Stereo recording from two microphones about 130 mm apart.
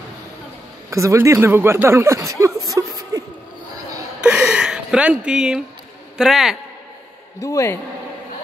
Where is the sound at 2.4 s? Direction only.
25° right (ahead or behind).